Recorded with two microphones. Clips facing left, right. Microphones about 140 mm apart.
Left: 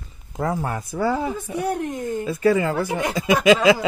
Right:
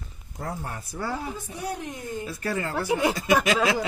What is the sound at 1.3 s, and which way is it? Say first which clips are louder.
Speech: left 8 dB; 60° left (ahead or behind).